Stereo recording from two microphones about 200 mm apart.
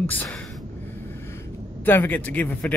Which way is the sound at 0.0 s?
10° left (ahead or behind).